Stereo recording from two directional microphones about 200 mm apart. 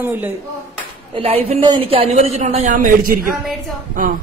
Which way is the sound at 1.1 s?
30° right (ahead or behind).